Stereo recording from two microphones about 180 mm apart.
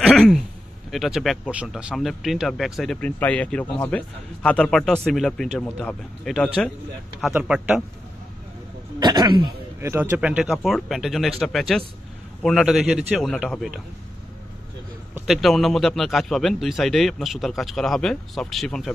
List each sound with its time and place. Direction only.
0.1 s a sound: 5° left (ahead or behind)
0.9 s speech: centre (ahead or behind)
9.0 s speech: 25° right (ahead or behind)
9.8 s speech: 15° right (ahead or behind)
15.2 s speech: centre (ahead or behind)